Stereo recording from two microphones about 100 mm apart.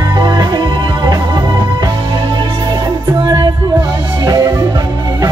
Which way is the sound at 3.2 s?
45° right (ahead or behind).